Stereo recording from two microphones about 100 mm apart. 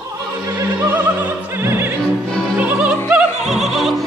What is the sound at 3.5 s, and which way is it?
Opera, 5° right (ahead or behind).